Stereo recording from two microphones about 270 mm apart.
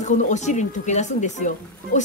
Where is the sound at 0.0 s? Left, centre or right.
Left.